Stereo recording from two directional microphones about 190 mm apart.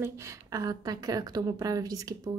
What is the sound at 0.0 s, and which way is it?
A woman's voice, 15° right (ahead or behind).